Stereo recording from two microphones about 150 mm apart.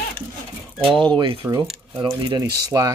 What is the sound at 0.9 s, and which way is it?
Speech, 35° right (ahead or behind).